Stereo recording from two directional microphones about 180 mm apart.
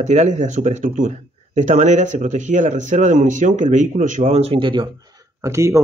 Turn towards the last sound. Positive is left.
turn(degrees=-15)  # may be behind; listen again after turning